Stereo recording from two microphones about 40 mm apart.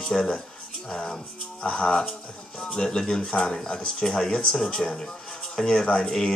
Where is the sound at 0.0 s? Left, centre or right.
Left.